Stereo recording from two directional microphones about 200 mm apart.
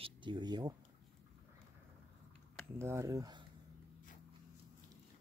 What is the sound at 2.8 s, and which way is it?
Speech, 15° right (ahead or behind).